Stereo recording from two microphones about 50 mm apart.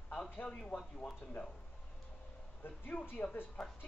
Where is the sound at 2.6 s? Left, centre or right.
Left.